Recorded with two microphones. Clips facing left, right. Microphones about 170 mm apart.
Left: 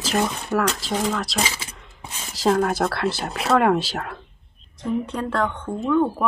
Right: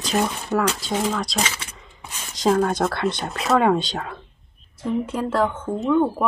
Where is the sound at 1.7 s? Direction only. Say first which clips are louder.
Even; centre (ahead or behind).